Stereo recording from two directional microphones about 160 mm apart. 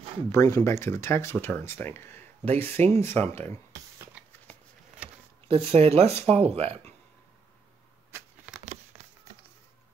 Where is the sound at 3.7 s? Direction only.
15° right (ahead or behind).